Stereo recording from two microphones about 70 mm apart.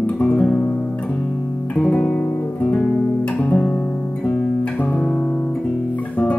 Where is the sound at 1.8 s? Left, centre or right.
Centre.